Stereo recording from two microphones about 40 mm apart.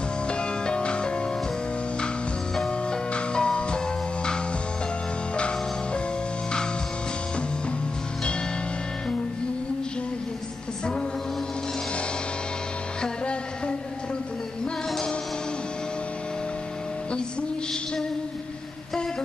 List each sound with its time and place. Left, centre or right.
0.3 s music: left
2.9 s music: left
13.0 s music: left